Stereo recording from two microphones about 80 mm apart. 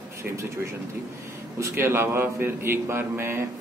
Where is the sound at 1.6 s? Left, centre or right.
Right.